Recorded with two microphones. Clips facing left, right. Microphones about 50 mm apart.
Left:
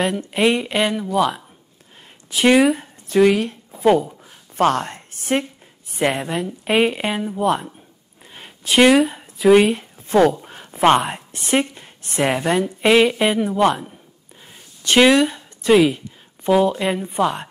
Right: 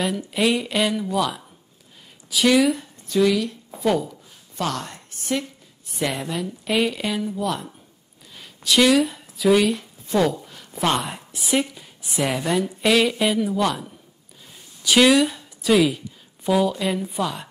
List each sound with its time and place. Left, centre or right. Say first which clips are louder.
0.3 s speech: left 3 dB; left
2.4 s speech: left 4 dB; left
3.8 s a sound: left 6 dB; left
5.9 s a woman's voice: left 5 dB; left
8.3 s a sound: left 1 dB; left
9.5 s a woman's voice: left 5 dB; left
12.2 s speech: left 4 dB; left
15.0 s speech: left 3 dB; left